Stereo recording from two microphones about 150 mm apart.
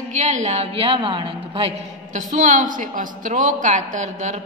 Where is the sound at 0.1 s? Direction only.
55° right (ahead or behind); by 1.7 s 35° right (ahead or behind).